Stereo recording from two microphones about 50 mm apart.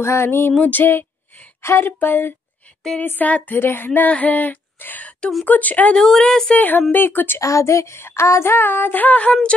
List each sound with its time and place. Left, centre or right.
0.0 s speech: left
0.6 s speech: left
1.6 s speech: left
1.9 s speech: left
3.5 s speech: left
5.9 s speech: centre
6.5 s speech: left
7.3 s speech: left
8.0 s speech: left